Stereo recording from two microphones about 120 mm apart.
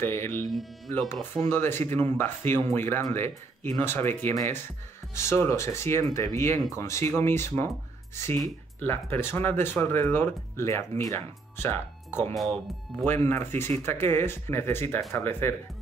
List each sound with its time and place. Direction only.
0.0 s speech: 20° left (ahead or behind)
0.5 s speech: centre (ahead or behind)
1.5 s speech: 20° left (ahead or behind)
8.7 s speech: 15° left (ahead or behind)
12.4 s speech: centre (ahead or behind)
13.0 s speech: 20° left (ahead or behind)